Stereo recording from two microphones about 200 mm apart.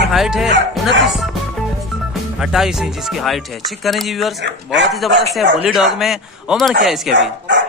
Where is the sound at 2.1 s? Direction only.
Centre (ahead or behind).